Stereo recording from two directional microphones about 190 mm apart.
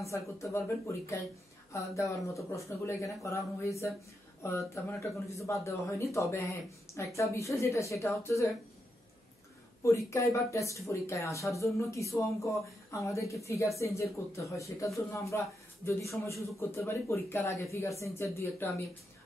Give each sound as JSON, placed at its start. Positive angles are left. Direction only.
{"t": 0.0, "sound": "speech", "side_deg": 15}
{"t": 9.8, "sound": "speech", "side_deg": 15}